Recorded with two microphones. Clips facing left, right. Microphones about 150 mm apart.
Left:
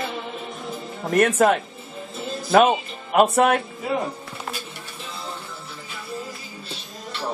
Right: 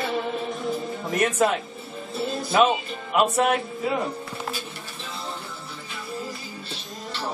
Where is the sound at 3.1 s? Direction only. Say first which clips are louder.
Left 4 dB; 50° left (ahead or behind).